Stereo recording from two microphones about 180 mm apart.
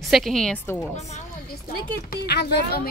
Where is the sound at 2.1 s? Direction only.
65° left (ahead or behind).